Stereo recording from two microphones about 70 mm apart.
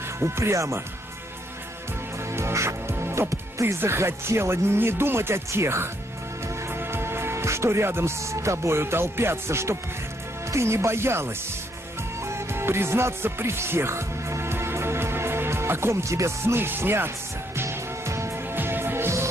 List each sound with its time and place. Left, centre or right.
0.2 s speech: right
2.2 s speech: right
17.6 s music: right